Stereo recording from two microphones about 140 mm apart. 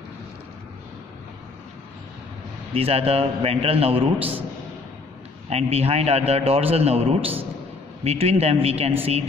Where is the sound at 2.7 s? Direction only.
45° right (ahead or behind).